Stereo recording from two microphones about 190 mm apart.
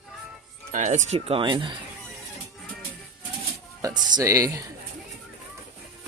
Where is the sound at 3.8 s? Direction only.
20° right (ahead or behind).